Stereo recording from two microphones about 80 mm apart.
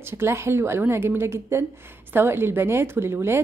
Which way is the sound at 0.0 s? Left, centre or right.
Right.